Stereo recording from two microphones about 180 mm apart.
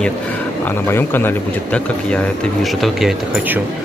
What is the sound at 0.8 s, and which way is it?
Speech, 10° left (ahead or behind).